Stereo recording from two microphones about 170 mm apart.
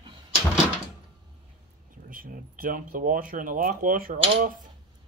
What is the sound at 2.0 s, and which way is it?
Speech, 55° right (ahead or behind).